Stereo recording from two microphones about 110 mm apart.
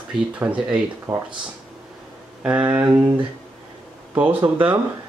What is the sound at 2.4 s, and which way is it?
Speech, 15° right (ahead or behind).